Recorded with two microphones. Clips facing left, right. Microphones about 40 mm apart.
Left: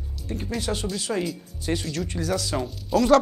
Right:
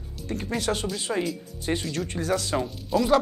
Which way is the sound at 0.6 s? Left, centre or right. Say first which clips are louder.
Right 2 dB; right.